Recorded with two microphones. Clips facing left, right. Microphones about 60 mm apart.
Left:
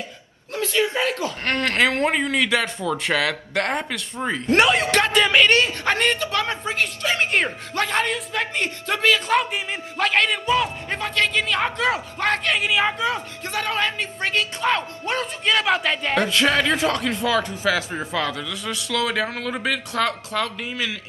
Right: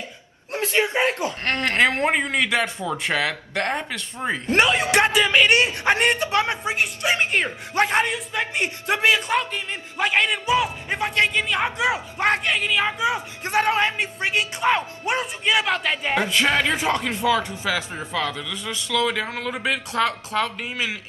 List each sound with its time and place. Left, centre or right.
0.5 s a man's voice: right
1.4 s speech: centre
5.5 s a man's voice: centre
7.2 s speech: centre
7.7 s a man's voice: right
8.1 s speech: centre
11.1 s a man's voice: right
11.3 s speech: centre
12.4 s speech: centre
13.4 s a man's voice: right
15.4 s speech: centre
19.7 s speech: centre
20.3 s a man's voice: right